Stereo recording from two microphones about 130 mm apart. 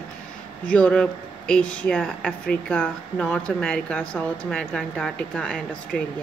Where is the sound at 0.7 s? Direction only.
10° left (ahead or behind).